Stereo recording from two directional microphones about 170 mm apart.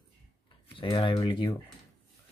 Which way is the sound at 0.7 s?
30° left (ahead or behind).